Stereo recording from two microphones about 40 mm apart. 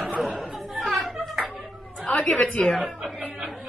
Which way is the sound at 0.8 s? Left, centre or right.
Centre.